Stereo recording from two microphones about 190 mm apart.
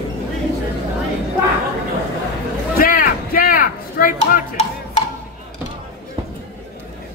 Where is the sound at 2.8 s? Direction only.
50° left (ahead or behind).